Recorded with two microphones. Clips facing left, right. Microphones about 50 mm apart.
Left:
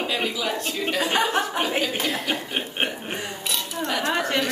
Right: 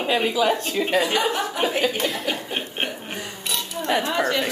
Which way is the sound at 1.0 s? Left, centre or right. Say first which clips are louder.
Even; left.